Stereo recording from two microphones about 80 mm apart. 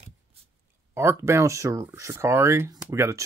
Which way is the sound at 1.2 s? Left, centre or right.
Right.